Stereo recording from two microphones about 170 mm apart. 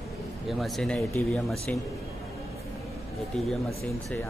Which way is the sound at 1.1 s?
15° left (ahead or behind).